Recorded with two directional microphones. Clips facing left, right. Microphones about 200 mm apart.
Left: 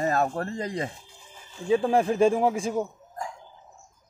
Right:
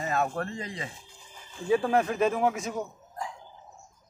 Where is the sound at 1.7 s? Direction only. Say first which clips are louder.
Left 3 dB; 25° left (ahead or behind).